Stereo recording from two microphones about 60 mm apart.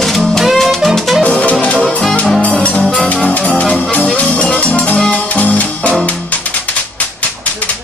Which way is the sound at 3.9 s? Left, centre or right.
Left.